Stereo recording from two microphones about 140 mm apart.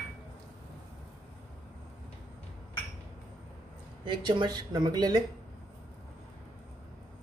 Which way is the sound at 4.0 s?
35° right (ahead or behind).